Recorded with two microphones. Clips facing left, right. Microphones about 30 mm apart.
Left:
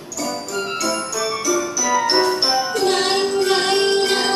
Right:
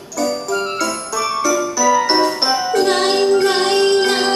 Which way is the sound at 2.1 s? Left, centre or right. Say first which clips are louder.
Right 2 dB; centre.